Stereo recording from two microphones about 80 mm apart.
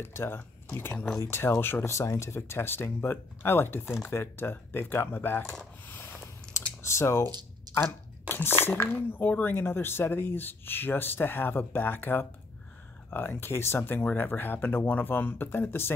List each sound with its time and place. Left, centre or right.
0.0 s speech: left
2.0 s speech: left
5.9 s a sound: left
6.5 s typing: left
7.7 s speech: left